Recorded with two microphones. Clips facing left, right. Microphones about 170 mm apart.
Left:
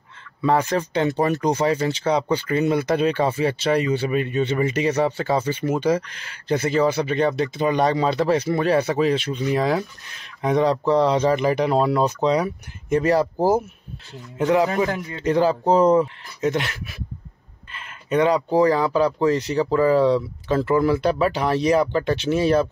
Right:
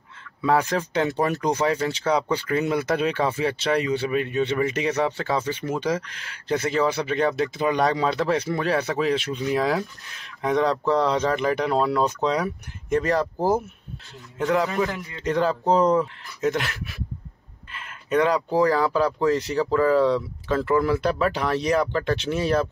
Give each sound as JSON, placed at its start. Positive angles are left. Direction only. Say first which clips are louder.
{"t": 0.4, "sound": "speech", "louder": "left 2 dB", "side_deg": 0}
{"t": 16.3, "sound": "speech", "louder": "left 2 dB", "side_deg": 0}